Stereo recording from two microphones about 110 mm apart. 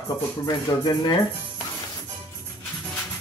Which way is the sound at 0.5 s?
35° left (ahead or behind).